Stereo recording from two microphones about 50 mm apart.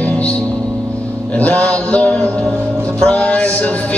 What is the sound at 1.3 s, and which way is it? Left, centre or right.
Mantra, left.